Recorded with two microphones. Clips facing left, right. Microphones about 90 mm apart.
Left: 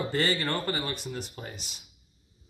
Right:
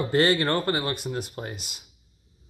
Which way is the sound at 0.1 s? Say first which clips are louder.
Right 9 dB; 60° right (ahead or behind).